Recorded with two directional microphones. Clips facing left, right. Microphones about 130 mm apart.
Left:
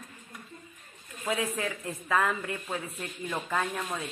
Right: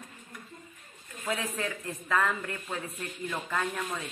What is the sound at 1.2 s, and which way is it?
Speech, 15° left (ahead or behind).